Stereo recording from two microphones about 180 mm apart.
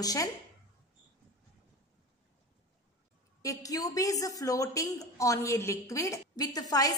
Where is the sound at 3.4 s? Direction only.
20° left (ahead or behind).